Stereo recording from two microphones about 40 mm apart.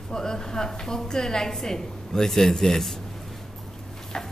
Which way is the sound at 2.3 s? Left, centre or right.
Centre.